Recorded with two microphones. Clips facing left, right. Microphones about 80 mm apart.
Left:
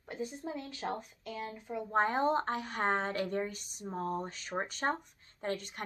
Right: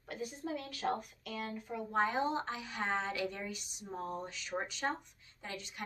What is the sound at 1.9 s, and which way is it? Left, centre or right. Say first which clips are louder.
A woman's voice: left 4 dB; left.